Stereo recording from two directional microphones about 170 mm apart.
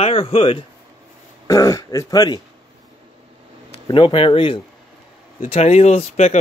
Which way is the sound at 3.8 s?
30° left (ahead or behind).